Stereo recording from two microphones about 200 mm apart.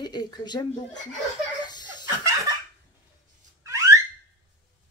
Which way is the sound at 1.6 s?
20° left (ahead or behind).